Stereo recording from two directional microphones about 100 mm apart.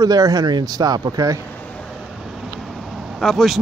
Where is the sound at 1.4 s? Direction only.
20° left (ahead or behind).